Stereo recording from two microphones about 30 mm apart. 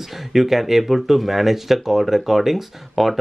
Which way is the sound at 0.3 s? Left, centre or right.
Centre.